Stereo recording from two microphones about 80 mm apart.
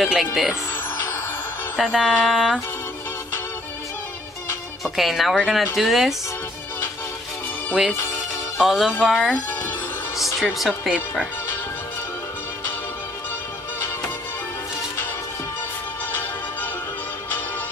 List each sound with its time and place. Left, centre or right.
0.0 s a woman's voice: centre
1.8 s a woman's voice: centre
2.0 s speech: centre
2.3 s music: centre
4.8 s a woman's voice: centre
8.5 s a woman's voice: centre
9.3 s speech: left
10.1 s a woman's voice: centre